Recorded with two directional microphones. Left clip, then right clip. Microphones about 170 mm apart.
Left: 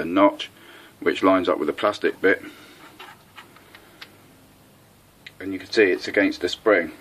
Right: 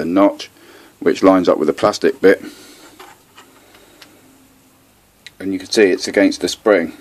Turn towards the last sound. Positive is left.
turn(degrees=-60)  # may be behind; listen again after turning